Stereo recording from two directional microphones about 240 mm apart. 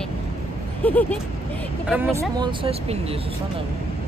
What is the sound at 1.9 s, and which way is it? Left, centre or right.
Speech, centre.